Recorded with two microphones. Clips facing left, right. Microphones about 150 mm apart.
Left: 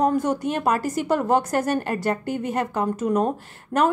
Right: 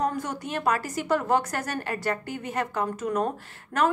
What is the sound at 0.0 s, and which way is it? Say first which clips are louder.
A woman's voice: left 8 dB; 45° left (ahead or behind).